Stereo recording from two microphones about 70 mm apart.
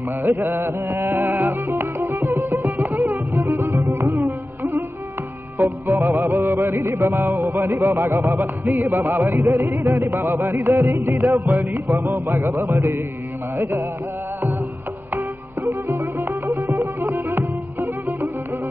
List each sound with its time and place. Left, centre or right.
0.2 s music: right
11.9 s music: right
15.9 s music: right
16.7 s music: right